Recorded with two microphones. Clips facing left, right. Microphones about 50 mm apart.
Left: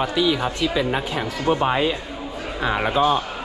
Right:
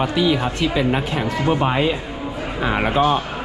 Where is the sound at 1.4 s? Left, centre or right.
Right.